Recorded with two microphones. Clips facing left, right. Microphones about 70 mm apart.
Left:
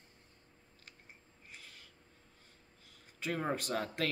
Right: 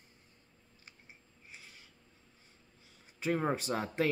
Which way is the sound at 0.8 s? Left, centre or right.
Centre.